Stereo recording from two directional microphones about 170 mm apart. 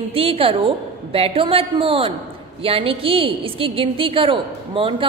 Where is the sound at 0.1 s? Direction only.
35° right (ahead or behind).